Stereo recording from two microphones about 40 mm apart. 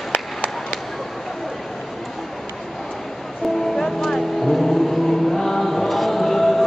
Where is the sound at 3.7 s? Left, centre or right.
Centre.